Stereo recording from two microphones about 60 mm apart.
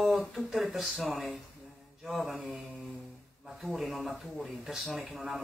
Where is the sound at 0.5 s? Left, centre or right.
Centre.